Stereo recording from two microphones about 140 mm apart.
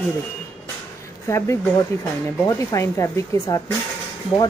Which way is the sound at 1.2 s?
20° left (ahead or behind).